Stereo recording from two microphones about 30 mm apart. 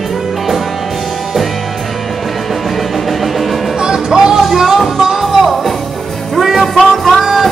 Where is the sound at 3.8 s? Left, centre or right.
Right.